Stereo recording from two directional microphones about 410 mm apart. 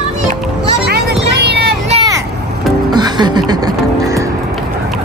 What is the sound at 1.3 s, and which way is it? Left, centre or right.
Vehicle, right.